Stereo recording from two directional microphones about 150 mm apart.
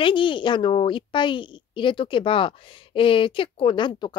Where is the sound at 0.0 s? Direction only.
35° left (ahead or behind).